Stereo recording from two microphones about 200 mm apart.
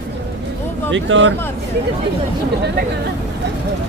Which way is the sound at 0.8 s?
70° right (ahead or behind).